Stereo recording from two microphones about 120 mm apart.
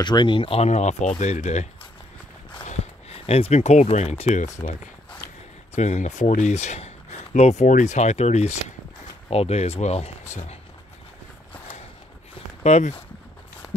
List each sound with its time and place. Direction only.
0.0 s speech: 40° left (ahead or behind); by 1.7 s 70° left (ahead or behind)
2.8 s speech: 55° left (ahead or behind)
5.8 s speech: 75° left (ahead or behind)
12.6 s speech: 65° left (ahead or behind)